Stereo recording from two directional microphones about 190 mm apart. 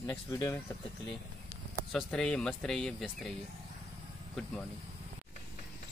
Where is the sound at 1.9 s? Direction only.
5° left (ahead or behind).